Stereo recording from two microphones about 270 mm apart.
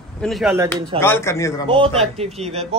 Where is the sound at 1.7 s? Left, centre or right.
Centre.